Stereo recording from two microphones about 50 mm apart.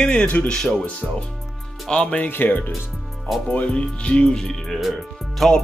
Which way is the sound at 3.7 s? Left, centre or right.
Left.